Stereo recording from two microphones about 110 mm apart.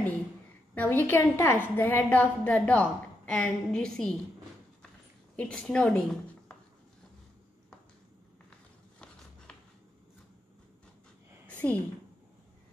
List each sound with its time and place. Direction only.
0.7 s a woman's voice: 15° left (ahead or behind)
5.3 s a woman's voice: 10° left (ahead or behind)
11.4 s a sound: 15° left (ahead or behind)